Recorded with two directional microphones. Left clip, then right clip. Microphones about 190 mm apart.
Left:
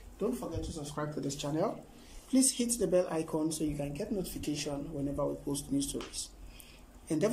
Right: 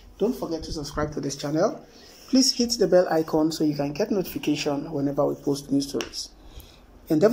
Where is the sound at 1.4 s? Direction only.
5° left (ahead or behind).